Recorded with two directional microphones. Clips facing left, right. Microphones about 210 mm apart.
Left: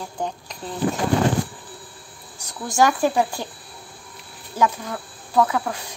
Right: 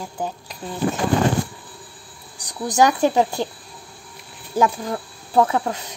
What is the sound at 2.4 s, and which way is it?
Speech, 20° right (ahead or behind).